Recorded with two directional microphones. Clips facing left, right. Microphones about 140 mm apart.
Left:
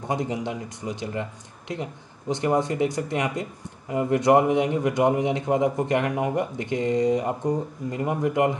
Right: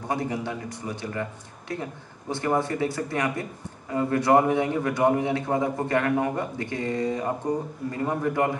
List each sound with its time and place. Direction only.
0.1 s a man's voice: 20° left (ahead or behind)